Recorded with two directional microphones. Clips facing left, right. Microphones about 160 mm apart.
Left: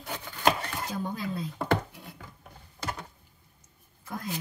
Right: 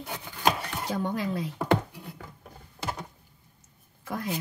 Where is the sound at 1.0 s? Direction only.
80° right.